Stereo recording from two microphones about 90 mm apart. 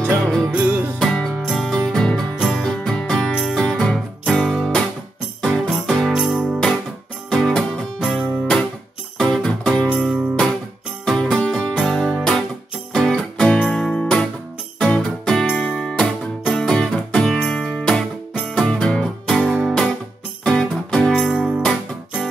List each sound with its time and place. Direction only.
0.0 s music: 10° left (ahead or behind)
0.5 s music: 20° right (ahead or behind)
0.9 s music: 5° left (ahead or behind)
9.2 s music: 5° left (ahead or behind)
12.2 s guitar: 5° left (ahead or behind)
12.9 s music: 10° left (ahead or behind)